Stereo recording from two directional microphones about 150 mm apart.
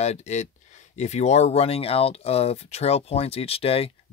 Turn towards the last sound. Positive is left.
turn(degrees=40)  # may be behind; listen again after turning